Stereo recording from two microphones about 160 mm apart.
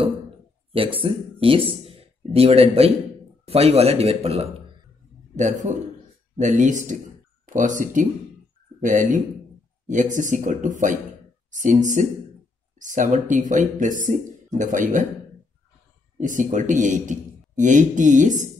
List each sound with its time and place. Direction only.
0.7 s a man's voice: 35° right (ahead or behind)
5.3 s a man's voice: 50° right (ahead or behind)
16.2 s speech: 55° right (ahead or behind)